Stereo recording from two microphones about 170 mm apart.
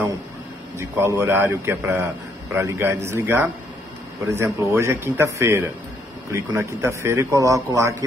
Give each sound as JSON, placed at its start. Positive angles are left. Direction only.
{"t": 0.7, "sound": "a man's voice", "side_deg": -15}